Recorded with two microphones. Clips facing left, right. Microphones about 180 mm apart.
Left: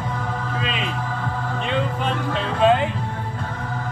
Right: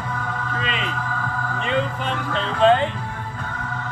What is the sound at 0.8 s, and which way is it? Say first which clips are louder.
Music: left 1 dB; 30° left (ahead or behind).